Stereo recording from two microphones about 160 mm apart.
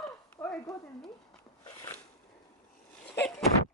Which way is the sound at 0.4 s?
20° left (ahead or behind).